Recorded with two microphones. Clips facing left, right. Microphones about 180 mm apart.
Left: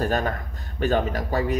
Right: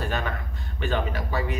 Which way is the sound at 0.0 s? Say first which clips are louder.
Left 5 dB; 40° left (ahead or behind).